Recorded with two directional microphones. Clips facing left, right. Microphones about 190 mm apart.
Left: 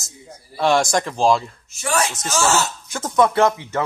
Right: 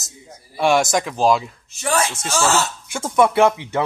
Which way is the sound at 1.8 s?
30° right (ahead or behind).